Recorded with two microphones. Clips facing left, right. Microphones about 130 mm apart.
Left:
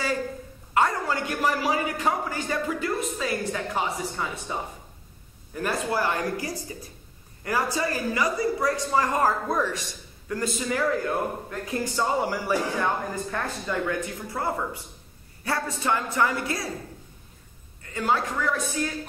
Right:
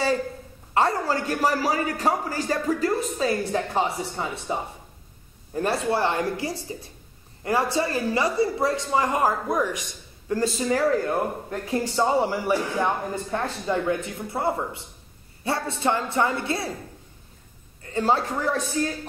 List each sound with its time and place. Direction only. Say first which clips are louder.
0.7 s a man's voice: right 2 dB; 35° right (ahead or behind); by 9.8 s 15° right (ahead or behind)
10.2 s a man's voice: right 4 dB; 30° right (ahead or behind)
17.8 s a man's voice: right 3 dB; 35° right (ahead or behind)